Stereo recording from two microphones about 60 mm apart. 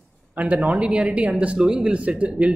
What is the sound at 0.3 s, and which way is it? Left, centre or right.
Speech, right.